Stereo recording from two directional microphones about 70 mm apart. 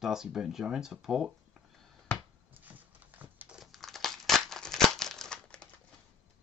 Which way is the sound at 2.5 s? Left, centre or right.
Right.